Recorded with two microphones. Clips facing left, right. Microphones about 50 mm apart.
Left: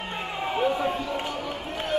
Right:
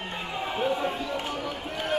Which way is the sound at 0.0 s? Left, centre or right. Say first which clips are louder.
Left 2 dB; left.